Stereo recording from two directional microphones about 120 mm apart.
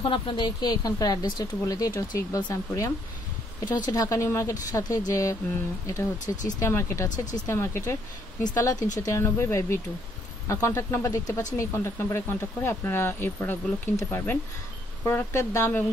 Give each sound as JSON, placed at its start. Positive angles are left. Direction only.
{"t": 0.0, "sound": "speech", "side_deg": 45}
{"t": 6.2, "sound": "speech", "side_deg": 90}
{"t": 6.6, "sound": "speech", "side_deg": 20}
{"t": 7.1, "sound": "speech", "side_deg": 90}
{"t": 7.4, "sound": "speech", "side_deg": 20}
{"t": 8.7, "sound": "speech", "side_deg": 90}
{"t": 9.0, "sound": "speech", "side_deg": 25}